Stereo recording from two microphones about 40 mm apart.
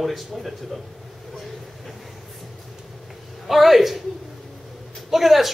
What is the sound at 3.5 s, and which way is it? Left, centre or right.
Speech, centre.